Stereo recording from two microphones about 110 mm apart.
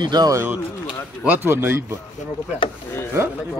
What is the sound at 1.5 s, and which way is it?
Speech, 20° right (ahead or behind).